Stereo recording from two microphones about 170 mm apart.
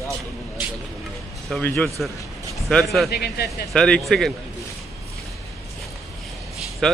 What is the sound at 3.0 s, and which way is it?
Speech, 70° left (ahead or behind).